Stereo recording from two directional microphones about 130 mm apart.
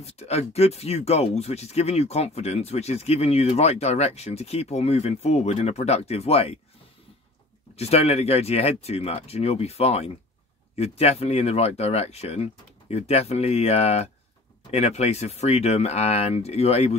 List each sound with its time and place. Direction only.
0.0 s speech: 55° left (ahead or behind)
7.7 s speech: 50° left (ahead or behind)